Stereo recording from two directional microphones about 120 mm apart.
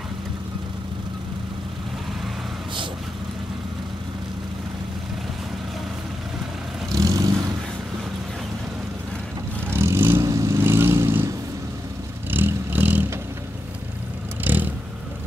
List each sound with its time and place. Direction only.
6.9 s vehicle: 30° right (ahead or behind)
9.7 s vehicle: 20° right (ahead or behind)
14.4 s vehicle: 15° right (ahead or behind)